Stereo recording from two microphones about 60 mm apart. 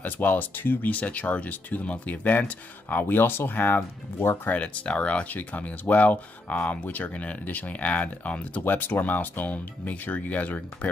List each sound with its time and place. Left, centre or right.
0.0 s speech: left